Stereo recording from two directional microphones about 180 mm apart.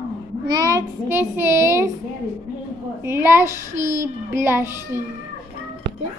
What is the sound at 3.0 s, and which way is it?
A child's voice, 15° right (ahead or behind).